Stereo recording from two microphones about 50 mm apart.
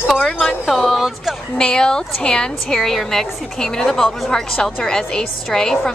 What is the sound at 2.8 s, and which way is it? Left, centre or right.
A woman's voice, centre.